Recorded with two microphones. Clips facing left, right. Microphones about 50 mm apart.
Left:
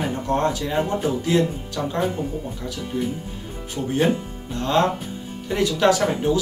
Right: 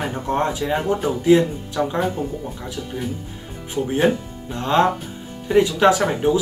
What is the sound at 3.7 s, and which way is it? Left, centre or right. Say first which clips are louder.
Speech: right 2 dB; centre.